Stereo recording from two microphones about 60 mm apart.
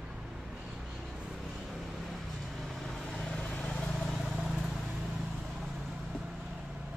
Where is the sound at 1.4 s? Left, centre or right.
Centre.